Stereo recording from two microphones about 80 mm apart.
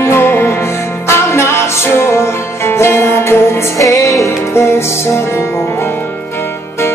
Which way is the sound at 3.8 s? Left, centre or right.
Left.